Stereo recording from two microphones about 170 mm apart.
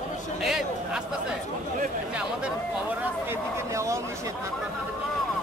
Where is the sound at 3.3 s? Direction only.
15° right (ahead or behind).